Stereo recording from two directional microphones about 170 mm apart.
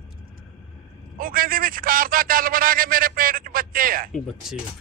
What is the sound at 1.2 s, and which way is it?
A man's voice, 55° right (ahead or behind).